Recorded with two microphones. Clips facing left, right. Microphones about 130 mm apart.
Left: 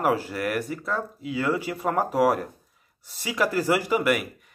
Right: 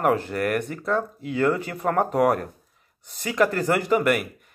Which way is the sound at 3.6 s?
5° left (ahead or behind).